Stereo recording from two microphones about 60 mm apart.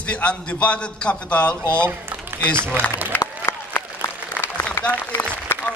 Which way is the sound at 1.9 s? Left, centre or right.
Right.